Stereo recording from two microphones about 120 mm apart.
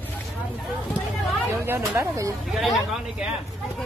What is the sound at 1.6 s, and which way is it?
Speech, 20° right (ahead or behind).